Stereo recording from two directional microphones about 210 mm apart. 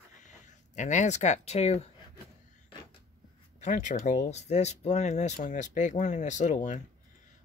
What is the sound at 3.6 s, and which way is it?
Speech, 35° left (ahead or behind).